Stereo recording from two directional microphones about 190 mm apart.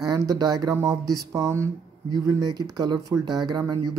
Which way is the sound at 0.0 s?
20° right (ahead or behind).